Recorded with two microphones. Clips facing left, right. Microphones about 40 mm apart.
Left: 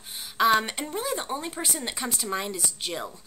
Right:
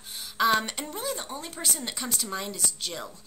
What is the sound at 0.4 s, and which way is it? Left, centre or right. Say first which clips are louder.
A woman's voice: left 2 dB; centre.